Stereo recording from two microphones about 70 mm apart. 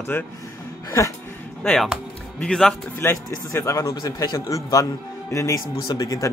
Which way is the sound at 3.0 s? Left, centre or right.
Left.